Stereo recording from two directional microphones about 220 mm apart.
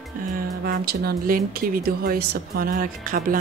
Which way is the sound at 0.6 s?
45° right (ahead or behind).